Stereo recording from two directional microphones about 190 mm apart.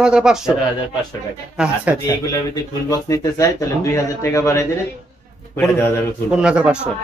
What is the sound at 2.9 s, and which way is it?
Speech, 15° left (ahead or behind).